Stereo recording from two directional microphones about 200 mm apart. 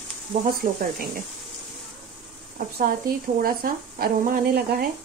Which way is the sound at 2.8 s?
45° right (ahead or behind).